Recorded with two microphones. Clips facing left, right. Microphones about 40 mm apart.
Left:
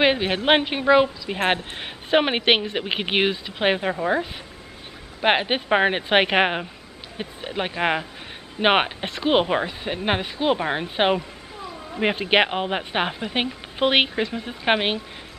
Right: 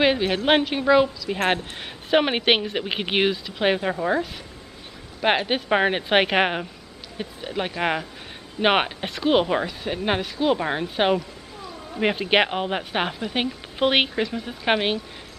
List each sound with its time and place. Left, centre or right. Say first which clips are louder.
0.0 s a woman's voice: even; centre
2.0 s a woman's voice: left 1 dB; centre
5.2 s a woman's voice: left 1 dB; centre